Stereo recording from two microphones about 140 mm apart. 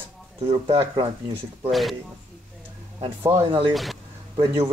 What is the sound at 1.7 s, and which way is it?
Speech, centre (ahead or behind).